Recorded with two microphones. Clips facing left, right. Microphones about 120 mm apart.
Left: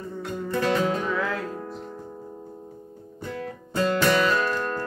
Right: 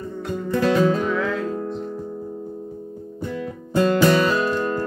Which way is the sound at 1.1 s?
5° left (ahead or behind).